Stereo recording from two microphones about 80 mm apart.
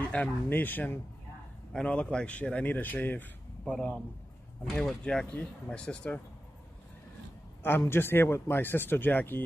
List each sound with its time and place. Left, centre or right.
0.0 s speech: centre
1.7 s speech: centre
7.9 s speech: left